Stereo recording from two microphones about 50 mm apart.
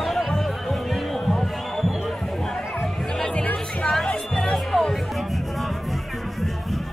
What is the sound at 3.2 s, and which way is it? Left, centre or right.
Music, left.